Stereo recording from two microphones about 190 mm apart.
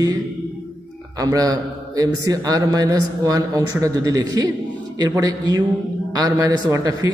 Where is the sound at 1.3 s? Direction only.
20° right (ahead or behind).